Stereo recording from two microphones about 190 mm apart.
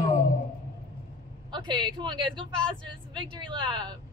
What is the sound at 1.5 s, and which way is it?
Speech, 25° right (ahead or behind).